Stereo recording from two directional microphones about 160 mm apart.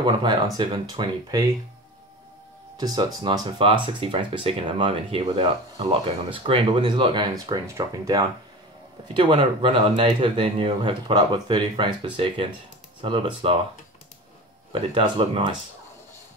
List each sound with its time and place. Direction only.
0.0 s speech: 30° right (ahead or behind)
2.8 s speech: 25° right (ahead or behind)
14.7 s speech: 35° right (ahead or behind)